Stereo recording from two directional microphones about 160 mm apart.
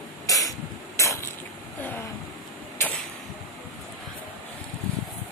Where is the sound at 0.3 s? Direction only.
20° left (ahead or behind).